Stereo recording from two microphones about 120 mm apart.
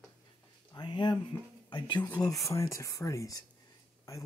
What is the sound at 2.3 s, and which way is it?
Speech, 25° left (ahead or behind).